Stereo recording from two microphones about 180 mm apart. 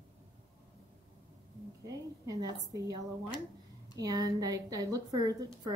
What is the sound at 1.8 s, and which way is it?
A woman's voice, 20° right (ahead or behind).